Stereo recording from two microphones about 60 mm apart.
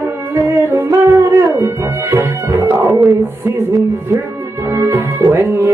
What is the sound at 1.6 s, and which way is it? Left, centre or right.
Music, right.